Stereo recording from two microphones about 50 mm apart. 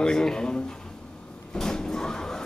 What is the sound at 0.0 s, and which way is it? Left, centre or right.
Speech, centre.